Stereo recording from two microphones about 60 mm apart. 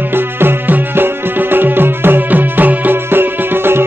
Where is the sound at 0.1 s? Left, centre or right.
Right.